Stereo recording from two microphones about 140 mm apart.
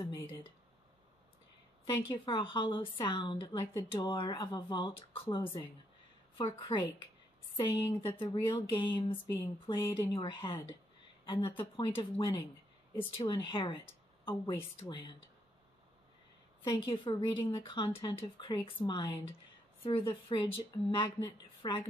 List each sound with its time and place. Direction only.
0.0 s speech: 30° left (ahead or behind)
1.9 s speech: 35° left (ahead or behind)
16.6 s speech: 30° left (ahead or behind)